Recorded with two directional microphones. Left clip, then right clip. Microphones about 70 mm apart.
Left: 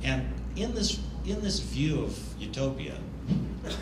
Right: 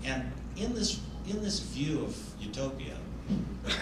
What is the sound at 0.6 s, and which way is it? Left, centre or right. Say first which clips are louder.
A man's voice: left 2 dB; right.